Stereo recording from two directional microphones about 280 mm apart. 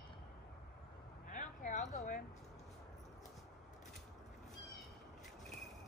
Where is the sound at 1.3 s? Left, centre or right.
Left.